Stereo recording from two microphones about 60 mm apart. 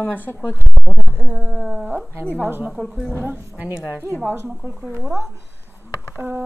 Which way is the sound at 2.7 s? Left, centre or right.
Centre.